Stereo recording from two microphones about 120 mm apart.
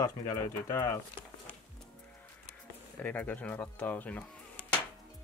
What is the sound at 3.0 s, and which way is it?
Speech, 15° left (ahead or behind).